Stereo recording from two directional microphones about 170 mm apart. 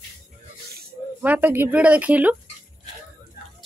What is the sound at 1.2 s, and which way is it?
Speech, 10° right (ahead or behind).